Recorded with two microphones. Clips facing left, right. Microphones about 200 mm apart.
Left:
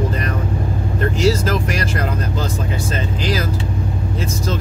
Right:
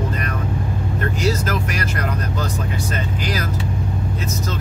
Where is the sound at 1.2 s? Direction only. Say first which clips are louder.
Left 5 dB; 30° left (ahead or behind).